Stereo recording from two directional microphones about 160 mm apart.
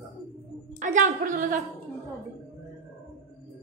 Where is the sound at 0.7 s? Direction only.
50° right (ahead or behind).